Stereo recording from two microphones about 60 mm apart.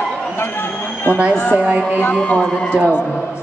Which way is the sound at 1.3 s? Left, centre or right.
Left.